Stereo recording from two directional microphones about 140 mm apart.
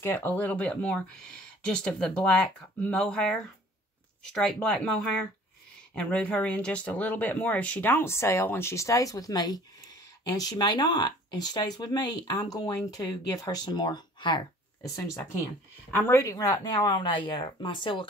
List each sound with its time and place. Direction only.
0.0 s speech: 15° left (ahead or behind); by 14.4 s 30° left (ahead or behind)
15.9 s speech: 20° left (ahead or behind)